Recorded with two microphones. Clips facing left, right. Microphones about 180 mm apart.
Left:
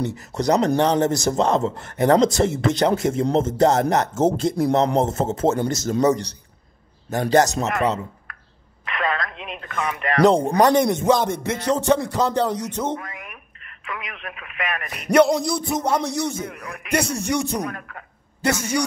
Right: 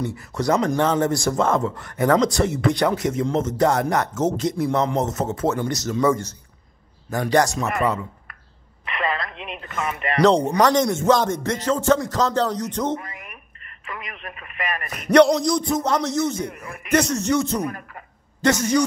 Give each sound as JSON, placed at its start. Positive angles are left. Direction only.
{"t": 0.0, "sound": "a man's voice", "side_deg": 20}
{"t": 7.1, "sound": "a man's voice", "side_deg": 25}
{"t": 7.6, "sound": "a man's voice", "side_deg": 0}
{"t": 8.8, "sound": "radio", "side_deg": 0}
{"t": 10.7, "sound": "speech", "side_deg": 15}
{"t": 13.0, "sound": "a man's voice", "side_deg": 0}
{"t": 16.9, "sound": "speech", "side_deg": 10}
{"t": 17.6, "sound": "a man's voice", "side_deg": -5}
{"t": 18.4, "sound": "speech", "side_deg": 10}